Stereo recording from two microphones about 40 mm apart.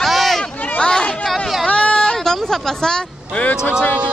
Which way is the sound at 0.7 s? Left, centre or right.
Centre.